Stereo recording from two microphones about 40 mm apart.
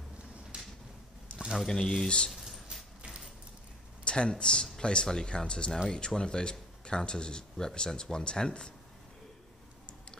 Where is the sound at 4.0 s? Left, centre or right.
Left.